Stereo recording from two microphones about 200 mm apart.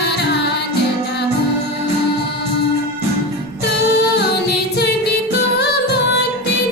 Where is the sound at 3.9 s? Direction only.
55° left (ahead or behind).